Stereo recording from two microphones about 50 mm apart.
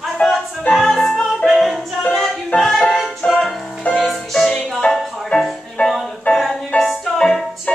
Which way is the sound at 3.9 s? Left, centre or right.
Centre.